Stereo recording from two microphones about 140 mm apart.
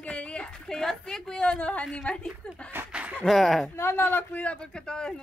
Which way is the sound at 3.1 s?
Centre (ahead or behind).